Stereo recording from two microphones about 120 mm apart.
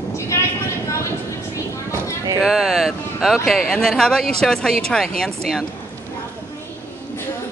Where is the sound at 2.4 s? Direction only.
5° right (ahead or behind).